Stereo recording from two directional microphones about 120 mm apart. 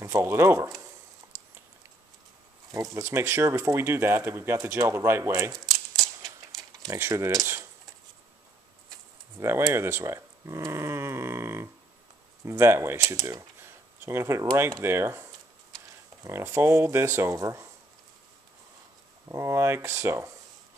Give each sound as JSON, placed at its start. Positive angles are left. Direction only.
{"t": 0.0, "sound": "speech", "side_deg": -20}
{"t": 2.7, "sound": "speech", "side_deg": -25}
{"t": 6.5, "sound": "a sound", "side_deg": 0}
{"t": 6.9, "sound": "speech", "side_deg": -25}
{"t": 9.4, "sound": "speech", "side_deg": -25}
{"t": 14.8, "sound": "speech", "side_deg": -20}
{"t": 16.3, "sound": "speech", "side_deg": -20}
{"t": 19.2, "sound": "speech", "side_deg": -25}